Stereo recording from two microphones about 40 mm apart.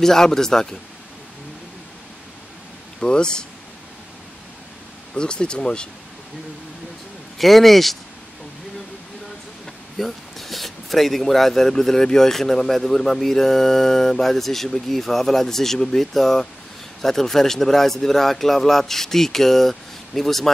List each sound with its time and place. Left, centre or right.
0.0 s speech: centre
3.0 s speech: left
5.1 s speech: left
7.3 s a man's voice: centre
9.9 s speech: centre